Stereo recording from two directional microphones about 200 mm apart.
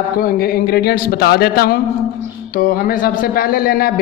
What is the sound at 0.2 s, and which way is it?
A man's voice, 50° left (ahead or behind).